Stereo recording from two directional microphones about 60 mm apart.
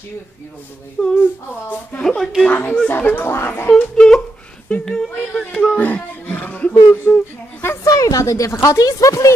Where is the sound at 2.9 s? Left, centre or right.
Left.